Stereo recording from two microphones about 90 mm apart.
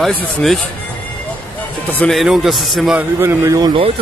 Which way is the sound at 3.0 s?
30° right (ahead or behind).